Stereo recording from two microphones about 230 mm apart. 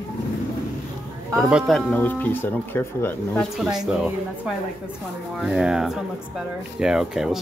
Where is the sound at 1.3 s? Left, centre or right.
Centre.